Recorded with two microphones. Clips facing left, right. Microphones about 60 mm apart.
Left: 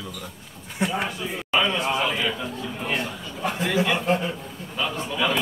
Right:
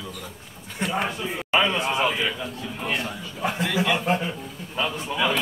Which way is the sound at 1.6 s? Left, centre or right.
Centre.